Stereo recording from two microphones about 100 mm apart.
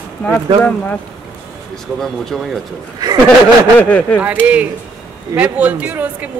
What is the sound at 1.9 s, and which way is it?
Speech, 5° left (ahead or behind).